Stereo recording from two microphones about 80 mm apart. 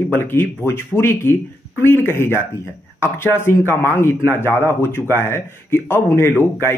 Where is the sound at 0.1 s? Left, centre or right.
Left.